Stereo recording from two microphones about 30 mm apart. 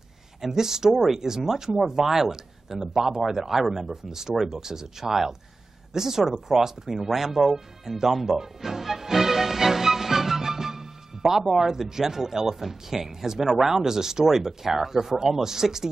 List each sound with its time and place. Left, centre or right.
0.4 s speech: centre